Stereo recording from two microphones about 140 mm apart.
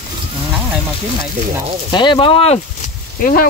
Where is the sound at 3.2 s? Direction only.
90° left.